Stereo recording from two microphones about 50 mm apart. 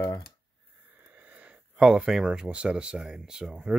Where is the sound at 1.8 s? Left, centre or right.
Centre.